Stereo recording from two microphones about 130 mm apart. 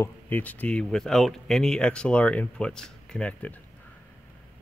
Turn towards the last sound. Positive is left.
turn(degrees=10)  # may be behind; listen again after turning